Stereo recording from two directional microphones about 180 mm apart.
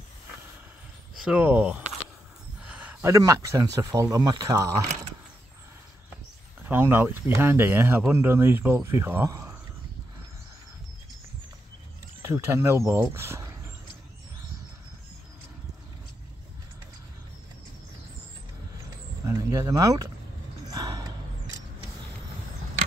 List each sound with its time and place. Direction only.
1.2 s speech: 5° right (ahead or behind)
6.6 s speech: 10° right (ahead or behind)
12.2 s speech: 15° right (ahead or behind)
19.2 s a sound: 20° right (ahead or behind)